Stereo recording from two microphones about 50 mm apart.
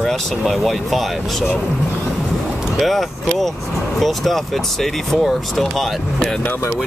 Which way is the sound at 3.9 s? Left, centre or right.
Centre.